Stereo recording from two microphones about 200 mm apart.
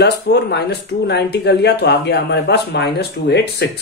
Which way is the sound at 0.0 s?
55° left (ahead or behind).